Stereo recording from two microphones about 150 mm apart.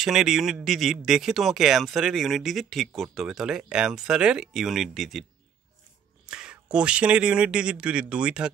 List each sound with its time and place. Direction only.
0.0 s speech: 5° right (ahead or behind)
6.2 s speech: 5° right (ahead or behind)